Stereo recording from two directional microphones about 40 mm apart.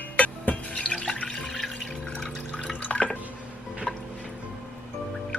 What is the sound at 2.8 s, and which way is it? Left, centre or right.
Drip, left.